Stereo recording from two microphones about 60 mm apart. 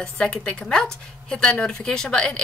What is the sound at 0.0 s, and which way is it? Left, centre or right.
A woman's voice, centre.